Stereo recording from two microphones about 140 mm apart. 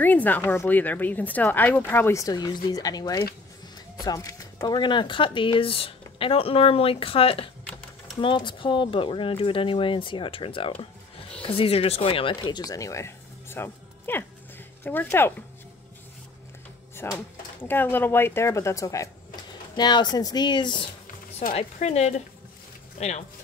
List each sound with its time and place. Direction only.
0.0 s speech: 10° left (ahead or behind)
16.9 s speech: 15° left (ahead or behind); by 20.9 s 35° left (ahead or behind)
21.5 s a woman's voice: 50° left (ahead or behind)